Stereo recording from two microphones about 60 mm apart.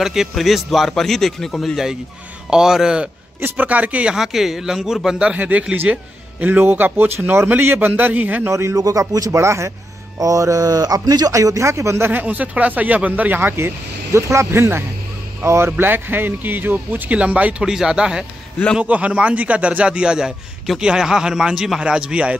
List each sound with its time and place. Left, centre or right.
0.0 s speech: centre
2.5 s a man's voice: centre
3.3 s a man's voice: right
4.1 s a man's voice: centre
5.3 s a man's voice: right
6.4 s speech: right
8.5 s speech: right
8.7 s a man's voice: right
9.4 s speech: right
10.1 s a man's voice: right
12.1 s speech: right
15.8 s a man's voice: right; by 22.3 s centre